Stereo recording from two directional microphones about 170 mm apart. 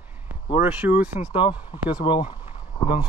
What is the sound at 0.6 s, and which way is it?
Speech, 10° right (ahead or behind).